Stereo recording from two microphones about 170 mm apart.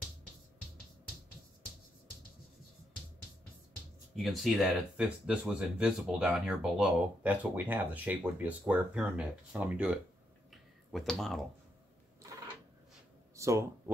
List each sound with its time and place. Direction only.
4.1 s speech: centre (ahead or behind)
10.5 s a sound: centre (ahead or behind)
13.4 s speech: 15° right (ahead or behind)